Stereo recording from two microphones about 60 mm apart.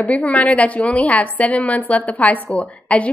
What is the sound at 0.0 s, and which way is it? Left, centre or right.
A woman's voice, left.